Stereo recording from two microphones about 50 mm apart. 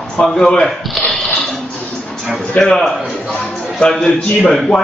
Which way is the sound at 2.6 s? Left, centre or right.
Left.